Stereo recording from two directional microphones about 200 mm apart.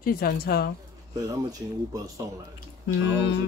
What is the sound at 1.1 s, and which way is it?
Speech, 15° right (ahead or behind).